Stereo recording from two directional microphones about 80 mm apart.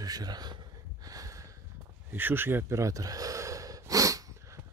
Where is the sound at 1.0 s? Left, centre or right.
Right.